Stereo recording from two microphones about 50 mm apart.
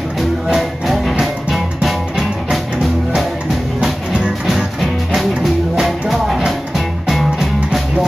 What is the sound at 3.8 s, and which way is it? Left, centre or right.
Music, centre.